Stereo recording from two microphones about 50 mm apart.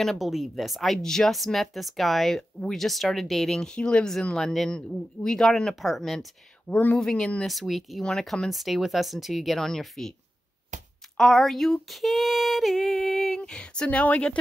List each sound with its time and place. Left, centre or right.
0.0 s speech: centre
6.7 s speech: left
7.0 s speech: centre
7.4 s speech: centre
8.0 s speech: centre
8.5 s speech: centre
11.1 s speech: centre; by 14.0 s left